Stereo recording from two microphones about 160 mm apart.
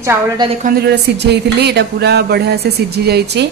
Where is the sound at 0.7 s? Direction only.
85° right.